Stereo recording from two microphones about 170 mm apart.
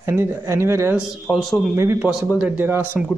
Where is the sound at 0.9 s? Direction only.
5° right (ahead or behind).